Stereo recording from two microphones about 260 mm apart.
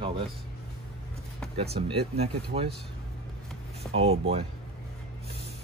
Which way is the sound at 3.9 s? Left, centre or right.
Right.